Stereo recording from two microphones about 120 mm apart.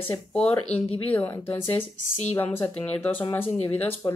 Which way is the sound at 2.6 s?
20° left (ahead or behind).